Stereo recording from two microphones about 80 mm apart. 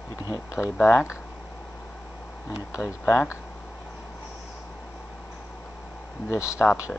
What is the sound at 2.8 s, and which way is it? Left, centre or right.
Speech, left.